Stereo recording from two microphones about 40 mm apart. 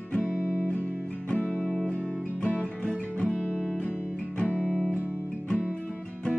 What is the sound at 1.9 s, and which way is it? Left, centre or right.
Guitar, left.